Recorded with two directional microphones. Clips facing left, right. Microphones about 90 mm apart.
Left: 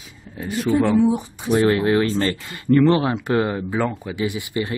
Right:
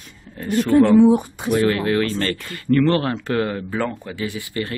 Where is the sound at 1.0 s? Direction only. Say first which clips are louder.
Right 5 dB; 60° right (ahead or behind).